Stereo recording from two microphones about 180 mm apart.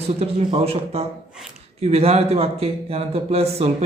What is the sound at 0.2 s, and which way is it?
Speech, 35° right (ahead or behind).